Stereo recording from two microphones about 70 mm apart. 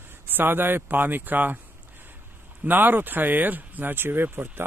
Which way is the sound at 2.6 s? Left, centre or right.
Right.